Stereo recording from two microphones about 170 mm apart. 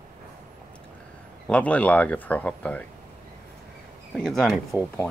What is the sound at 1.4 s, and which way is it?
Speech, 10° left (ahead or behind).